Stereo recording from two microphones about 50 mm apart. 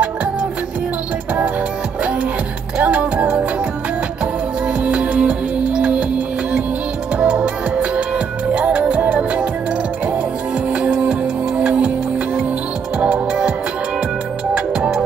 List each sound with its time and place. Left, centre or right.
2.8 s music: right
4.6 s music: right
10.7 s music: right
13.0 s music: centre
14.5 s music: right